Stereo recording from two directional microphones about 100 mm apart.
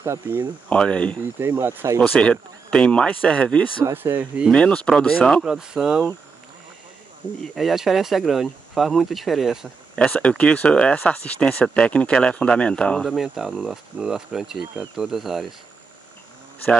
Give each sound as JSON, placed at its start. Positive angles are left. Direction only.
{"t": 0.0, "sound": "speech", "side_deg": -25}
{"t": 0.7, "sound": "speech", "side_deg": 10}
{"t": 1.4, "sound": "speech", "side_deg": -20}
{"t": 2.1, "sound": "speech", "side_deg": 10}
{"t": 3.8, "sound": "speech", "side_deg": -20}
{"t": 4.5, "sound": "speech", "side_deg": 10}
{"t": 5.4, "sound": "speech", "side_deg": -5}
{"t": 7.4, "sound": "speech", "side_deg": 0}
{"t": 10.1, "sound": "speech", "side_deg": 10}